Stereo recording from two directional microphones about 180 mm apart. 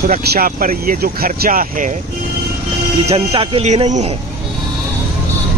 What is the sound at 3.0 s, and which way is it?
Speech, 35° right (ahead or behind).